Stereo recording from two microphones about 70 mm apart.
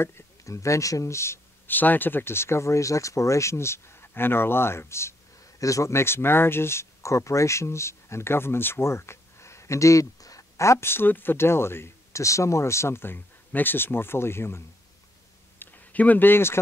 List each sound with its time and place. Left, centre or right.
0.0 s speech: left
1.7 s speech: left
5.6 s speech: left
15.6 s a sound: left